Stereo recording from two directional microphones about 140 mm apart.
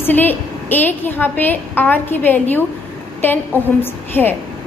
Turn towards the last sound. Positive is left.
turn(degrees=15)  # may be behind; listen again after turning